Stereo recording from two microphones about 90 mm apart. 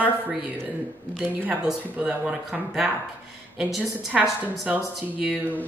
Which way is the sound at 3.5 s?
Centre (ahead or behind).